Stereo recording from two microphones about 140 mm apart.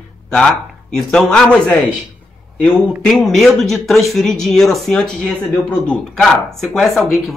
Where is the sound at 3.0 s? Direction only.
5° left (ahead or behind).